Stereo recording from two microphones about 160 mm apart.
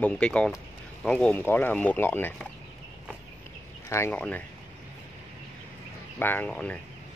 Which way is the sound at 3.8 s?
15° left (ahead or behind).